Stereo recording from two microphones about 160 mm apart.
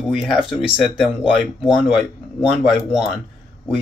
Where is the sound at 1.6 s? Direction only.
5° right (ahead or behind).